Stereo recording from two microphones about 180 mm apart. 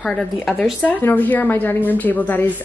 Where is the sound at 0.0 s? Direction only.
5° left (ahead or behind).